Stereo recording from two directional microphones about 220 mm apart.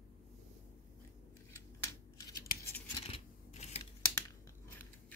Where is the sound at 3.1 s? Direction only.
30° left (ahead or behind).